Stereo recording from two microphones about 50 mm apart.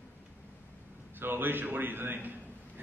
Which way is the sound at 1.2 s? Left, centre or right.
Right.